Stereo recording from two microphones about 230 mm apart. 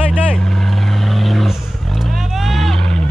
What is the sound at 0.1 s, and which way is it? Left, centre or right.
Vehicle, centre.